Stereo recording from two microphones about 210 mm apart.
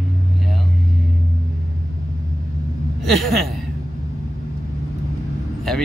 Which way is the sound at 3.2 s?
Centre (ahead or behind).